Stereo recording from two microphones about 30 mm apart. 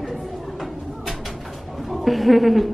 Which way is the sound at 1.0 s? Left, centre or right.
Centre.